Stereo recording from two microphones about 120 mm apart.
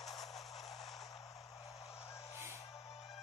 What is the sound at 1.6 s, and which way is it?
Vehicle, 55° left (ahead or behind).